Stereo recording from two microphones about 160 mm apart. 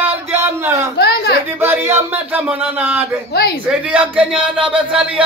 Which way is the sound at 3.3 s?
90° left.